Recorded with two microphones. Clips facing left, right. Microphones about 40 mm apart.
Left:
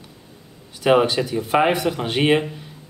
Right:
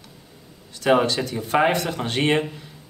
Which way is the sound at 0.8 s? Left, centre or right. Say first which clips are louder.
Left 2 dB; centre.